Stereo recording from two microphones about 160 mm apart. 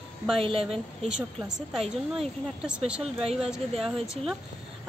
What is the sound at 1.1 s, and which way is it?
Speech, 5° right (ahead or behind).